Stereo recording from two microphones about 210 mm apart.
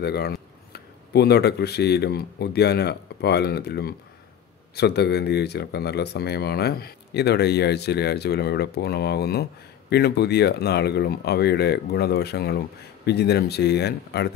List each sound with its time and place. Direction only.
0.0 s speech: 50° left (ahead or behind)